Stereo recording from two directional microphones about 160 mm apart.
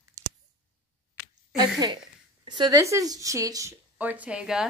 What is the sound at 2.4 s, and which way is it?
A woman's voice, 25° right (ahead or behind).